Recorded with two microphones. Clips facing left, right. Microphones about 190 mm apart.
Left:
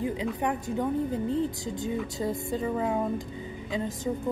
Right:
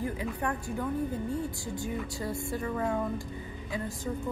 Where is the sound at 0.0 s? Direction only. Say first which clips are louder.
Left 4 dB; 15° left (ahead or behind).